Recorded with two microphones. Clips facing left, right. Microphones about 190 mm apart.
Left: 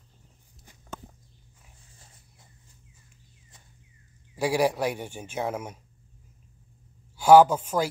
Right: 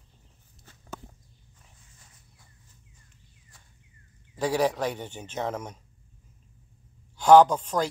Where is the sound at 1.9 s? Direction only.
30° left (ahead or behind).